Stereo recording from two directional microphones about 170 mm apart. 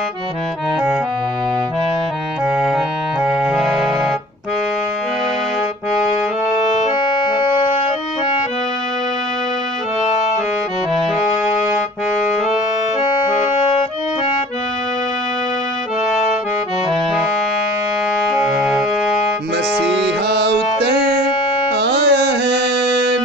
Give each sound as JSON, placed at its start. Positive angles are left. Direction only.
{"t": 3.5, "sound": "music", "side_deg": -5}
{"t": 18.2, "sound": "music", "side_deg": 0}
{"t": 20.2, "sound": "music", "side_deg": -80}
{"t": 21.7, "sound": "carnatic music", "side_deg": -80}